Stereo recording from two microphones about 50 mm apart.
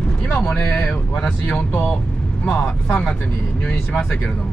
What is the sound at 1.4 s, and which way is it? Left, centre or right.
Speech, left.